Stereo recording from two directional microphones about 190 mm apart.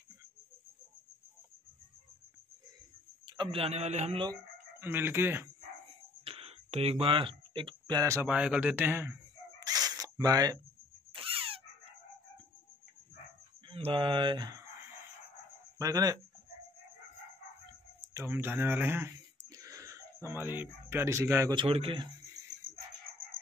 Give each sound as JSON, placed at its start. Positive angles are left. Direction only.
{"t": 3.3, "sound": "a man's voice", "side_deg": -25}
{"t": 4.3, "sound": "speech", "side_deg": -10}
{"t": 6.2, "sound": "a sound", "side_deg": -30}
{"t": 8.3, "sound": "speech", "side_deg": -5}
{"t": 9.7, "sound": "a sound", "side_deg": -20}
{"t": 13.7, "sound": "speech", "side_deg": -30}
{"t": 15.8, "sound": "a man's voice", "side_deg": -20}
{"t": 18.1, "sound": "speech", "side_deg": -10}
{"t": 19.5, "sound": "throat clearing", "side_deg": -20}
{"t": 20.2, "sound": "speech", "side_deg": -10}
{"t": 21.6, "sound": "a man's voice", "side_deg": -30}